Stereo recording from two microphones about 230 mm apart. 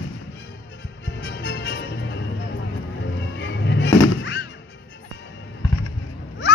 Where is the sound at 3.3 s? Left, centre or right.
Left.